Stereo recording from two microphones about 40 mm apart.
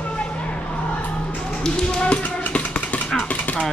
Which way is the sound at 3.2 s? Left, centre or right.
Left.